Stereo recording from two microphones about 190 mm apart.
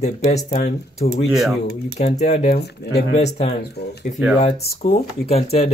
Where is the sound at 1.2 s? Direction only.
Centre (ahead or behind).